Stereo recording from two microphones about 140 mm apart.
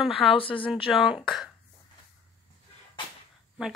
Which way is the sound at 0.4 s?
40° left (ahead or behind).